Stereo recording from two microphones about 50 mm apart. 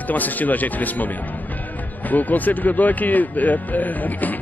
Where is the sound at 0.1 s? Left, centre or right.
Left.